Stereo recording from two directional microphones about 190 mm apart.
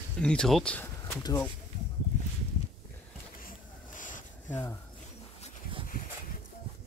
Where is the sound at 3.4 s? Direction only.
45° left (ahead or behind).